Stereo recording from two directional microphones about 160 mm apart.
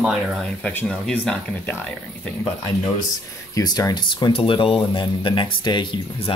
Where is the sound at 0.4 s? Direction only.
10° left (ahead or behind).